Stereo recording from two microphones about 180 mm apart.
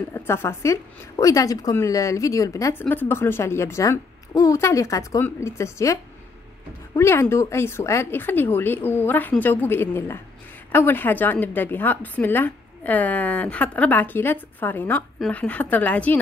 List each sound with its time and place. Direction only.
0.1 s a woman's voice: 15° left (ahead or behind)
7.0 s a woman's voice: 15° left (ahead or behind)